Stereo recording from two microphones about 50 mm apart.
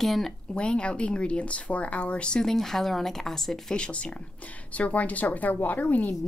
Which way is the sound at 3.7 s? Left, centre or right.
Left.